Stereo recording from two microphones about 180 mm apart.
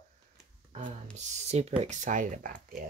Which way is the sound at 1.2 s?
40° right (ahead or behind).